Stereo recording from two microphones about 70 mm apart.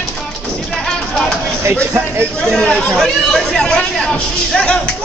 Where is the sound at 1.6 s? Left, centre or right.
Right.